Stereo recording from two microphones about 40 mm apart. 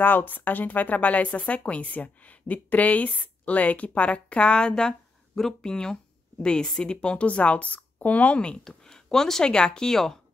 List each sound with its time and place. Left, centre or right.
0.0 s speech: left
8.6 s speech: centre